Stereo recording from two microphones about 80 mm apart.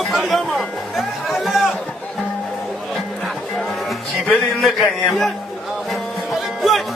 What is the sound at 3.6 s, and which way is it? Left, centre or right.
Music, centre.